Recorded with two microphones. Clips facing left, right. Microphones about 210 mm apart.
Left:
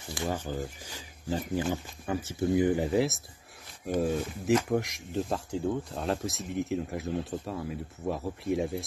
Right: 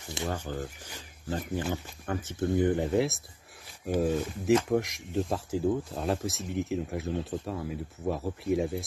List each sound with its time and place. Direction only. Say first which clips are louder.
0.2 s speech: left 1 dB; 25° right (ahead or behind)
0.9 s speech: left 2 dB; 10° left (ahead or behind)